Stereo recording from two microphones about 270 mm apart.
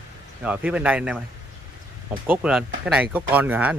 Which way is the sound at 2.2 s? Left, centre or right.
Centre.